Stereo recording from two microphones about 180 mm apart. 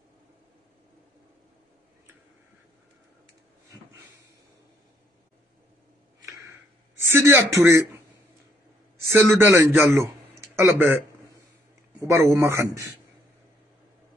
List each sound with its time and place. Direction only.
7.0 s speech: 15° right (ahead or behind)
9.1 s a man's voice: 15° right (ahead or behind)
12.0 s speech: 15° right (ahead or behind)